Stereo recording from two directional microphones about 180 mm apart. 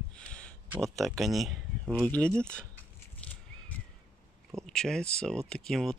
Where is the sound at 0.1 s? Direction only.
5° left (ahead or behind).